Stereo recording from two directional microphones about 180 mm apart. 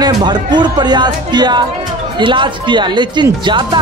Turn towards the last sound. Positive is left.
turn(degrees=-25)  # may be behind; listen again after turning